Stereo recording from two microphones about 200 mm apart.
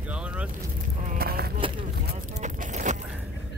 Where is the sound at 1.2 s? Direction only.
50° right (ahead or behind).